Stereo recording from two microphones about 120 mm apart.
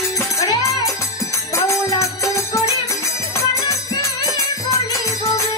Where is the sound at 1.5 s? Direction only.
25° left (ahead or behind).